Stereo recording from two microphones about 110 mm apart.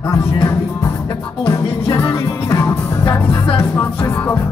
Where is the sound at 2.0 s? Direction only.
20° left (ahead or behind).